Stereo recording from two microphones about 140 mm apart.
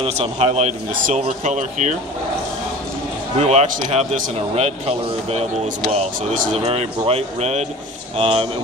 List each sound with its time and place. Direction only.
0.0 s a man's voice: 45° right (ahead or behind)
0.9 s a man's voice: 70° right (ahead or behind)
1.2 s speech: 60° right (ahead or behind)
3.3 s a man's voice: 50° right (ahead or behind)